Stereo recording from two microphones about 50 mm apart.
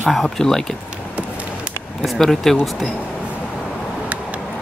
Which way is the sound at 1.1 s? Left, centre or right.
Right.